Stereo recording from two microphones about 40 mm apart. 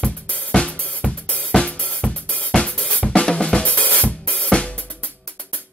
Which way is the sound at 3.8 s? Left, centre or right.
Left.